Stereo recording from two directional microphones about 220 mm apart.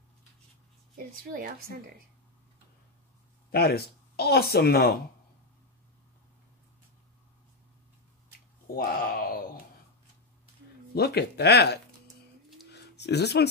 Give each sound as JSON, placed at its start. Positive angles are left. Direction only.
{"t": 1.3, "sound": "speech", "side_deg": -45}
{"t": 3.5, "sound": "speech", "side_deg": 45}
{"t": 8.7, "sound": "speech", "side_deg": 40}
{"t": 11.0, "sound": "speech", "side_deg": 45}
{"t": 12.7, "sound": "a sound", "side_deg": 50}